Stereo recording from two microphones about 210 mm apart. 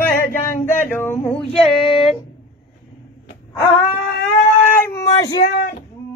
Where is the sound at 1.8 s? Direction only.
25° left (ahead or behind).